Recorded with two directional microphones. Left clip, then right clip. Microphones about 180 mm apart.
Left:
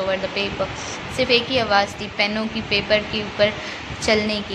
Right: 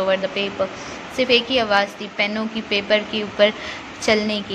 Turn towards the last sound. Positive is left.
turn(degrees=-20)  # may be behind; listen again after turning